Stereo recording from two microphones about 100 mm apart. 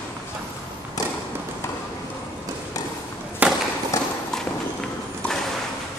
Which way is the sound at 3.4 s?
15° right (ahead or behind).